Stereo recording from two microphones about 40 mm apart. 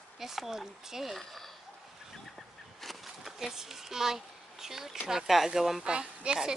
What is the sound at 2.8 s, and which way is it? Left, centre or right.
Bee, centre.